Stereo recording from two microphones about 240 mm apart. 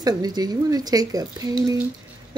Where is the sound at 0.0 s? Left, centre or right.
Centre.